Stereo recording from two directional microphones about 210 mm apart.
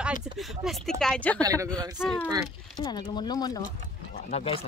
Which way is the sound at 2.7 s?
20° left (ahead or behind).